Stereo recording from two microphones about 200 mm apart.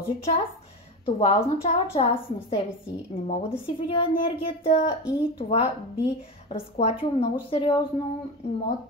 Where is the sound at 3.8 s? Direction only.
25° left (ahead or behind).